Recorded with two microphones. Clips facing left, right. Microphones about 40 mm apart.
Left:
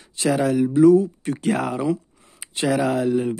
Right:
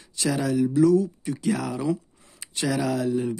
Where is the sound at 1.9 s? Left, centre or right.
Left.